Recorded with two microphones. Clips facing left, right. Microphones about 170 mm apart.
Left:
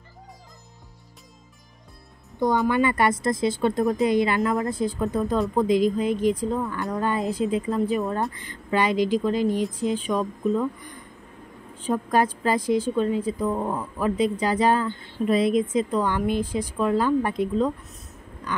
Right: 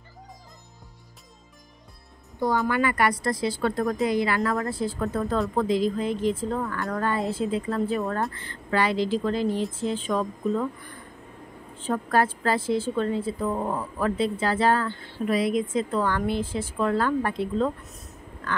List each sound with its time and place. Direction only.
2.3 s a woman's voice: 20° left (ahead or behind)
11.8 s speech: 15° left (ahead or behind)
13.6 s speech: centre (ahead or behind)
13.9 s speech: 15° left (ahead or behind)
17.8 s speech: centre (ahead or behind)